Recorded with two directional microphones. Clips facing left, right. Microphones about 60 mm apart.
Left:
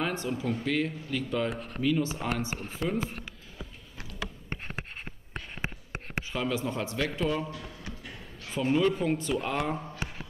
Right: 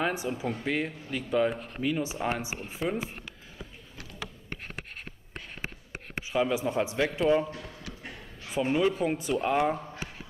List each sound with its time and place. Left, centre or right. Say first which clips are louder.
0.0 s speech: right 1 dB; centre
1.5 s speech: even; right
1.8 s speech: left 3 dB; centre
6.3 s a man's voice: right 5 dB; centre
8.5 s a man's voice: even; centre